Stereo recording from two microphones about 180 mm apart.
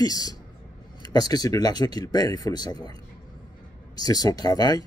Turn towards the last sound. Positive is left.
turn(degrees=20)  # may be behind; listen again after turning